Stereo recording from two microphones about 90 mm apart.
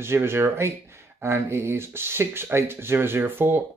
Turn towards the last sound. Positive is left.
turn(degrees=-25)  # may be behind; listen again after turning